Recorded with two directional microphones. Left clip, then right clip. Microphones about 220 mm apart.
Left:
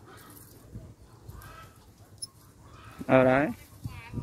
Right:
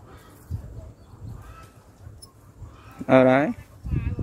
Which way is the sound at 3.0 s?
10° right (ahead or behind).